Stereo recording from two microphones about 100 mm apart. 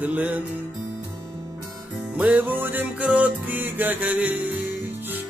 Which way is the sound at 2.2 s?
15° right (ahead or behind).